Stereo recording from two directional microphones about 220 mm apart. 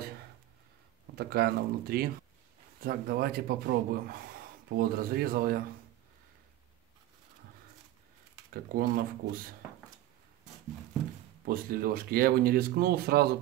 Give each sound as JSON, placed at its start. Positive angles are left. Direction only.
{"t": 1.1, "sound": "speech", "side_deg": -45}
{"t": 8.7, "sound": "speech", "side_deg": -40}
{"t": 11.4, "sound": "speech", "side_deg": -40}